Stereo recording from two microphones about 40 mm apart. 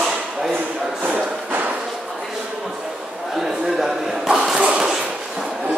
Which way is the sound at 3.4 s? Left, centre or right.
Centre.